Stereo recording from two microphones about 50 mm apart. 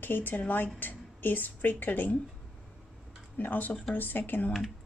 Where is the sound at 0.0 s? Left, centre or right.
Left.